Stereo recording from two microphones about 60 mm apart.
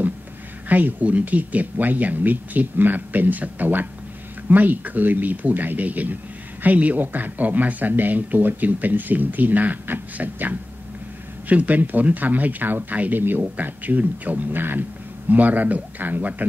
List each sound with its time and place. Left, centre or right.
0.7 s speech: right